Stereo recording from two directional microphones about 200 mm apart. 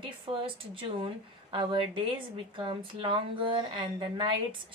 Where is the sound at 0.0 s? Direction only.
25° right (ahead or behind).